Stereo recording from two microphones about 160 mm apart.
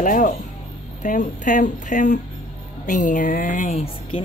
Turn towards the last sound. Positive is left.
turn(degrees=40)  # may be behind; listen again after turning